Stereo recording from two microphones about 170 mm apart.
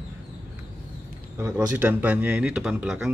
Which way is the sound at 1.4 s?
10° right (ahead or behind).